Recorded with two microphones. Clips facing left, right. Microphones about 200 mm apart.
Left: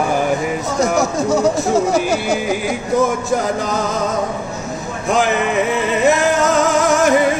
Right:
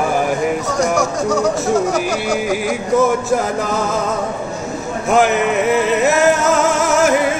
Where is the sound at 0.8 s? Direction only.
25° left (ahead or behind).